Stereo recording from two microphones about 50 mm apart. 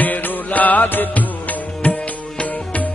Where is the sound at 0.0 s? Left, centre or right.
Left.